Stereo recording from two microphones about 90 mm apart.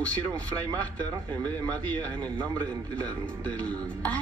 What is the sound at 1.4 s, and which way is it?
Speech, 45° right (ahead or behind).